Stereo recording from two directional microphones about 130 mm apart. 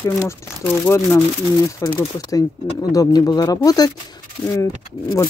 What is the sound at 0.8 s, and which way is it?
Speech, 15° left (ahead or behind).